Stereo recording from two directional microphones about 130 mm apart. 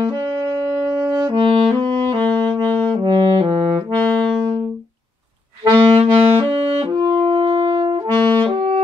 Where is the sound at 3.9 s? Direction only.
10° left (ahead or behind).